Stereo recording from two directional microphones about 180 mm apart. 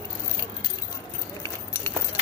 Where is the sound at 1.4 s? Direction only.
15° left (ahead or behind).